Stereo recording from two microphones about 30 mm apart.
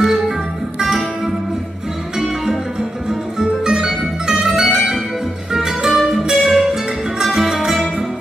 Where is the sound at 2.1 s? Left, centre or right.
Centre.